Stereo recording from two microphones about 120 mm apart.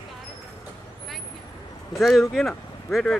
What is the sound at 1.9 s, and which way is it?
Speech, centre (ahead or behind).